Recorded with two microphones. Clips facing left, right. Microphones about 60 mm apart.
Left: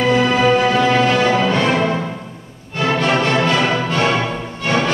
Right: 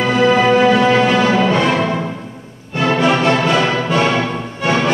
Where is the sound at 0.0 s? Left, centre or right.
Centre.